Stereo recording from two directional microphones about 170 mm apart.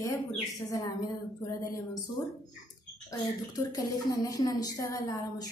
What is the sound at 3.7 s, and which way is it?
A woman's voice, 20° left (ahead or behind).